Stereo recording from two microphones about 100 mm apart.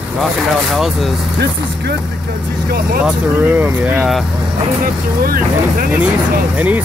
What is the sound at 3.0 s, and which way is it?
Speech, 20° right (ahead or behind).